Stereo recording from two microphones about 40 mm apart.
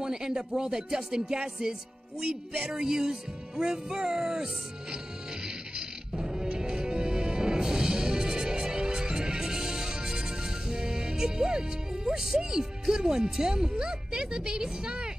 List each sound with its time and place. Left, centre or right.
0.0 s music: centre